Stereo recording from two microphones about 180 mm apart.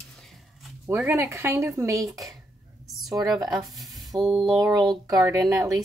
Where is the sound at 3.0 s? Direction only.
Centre (ahead or behind).